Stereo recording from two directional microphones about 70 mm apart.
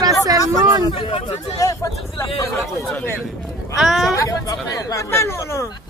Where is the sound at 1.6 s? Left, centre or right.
Left.